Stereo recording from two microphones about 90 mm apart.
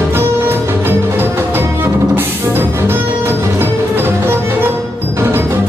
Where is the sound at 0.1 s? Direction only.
25° right (ahead or behind).